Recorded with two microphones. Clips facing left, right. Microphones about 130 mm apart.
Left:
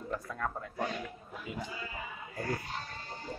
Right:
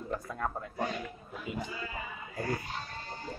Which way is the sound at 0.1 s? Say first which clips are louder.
Right 1 dB; 15° right (ahead or behind).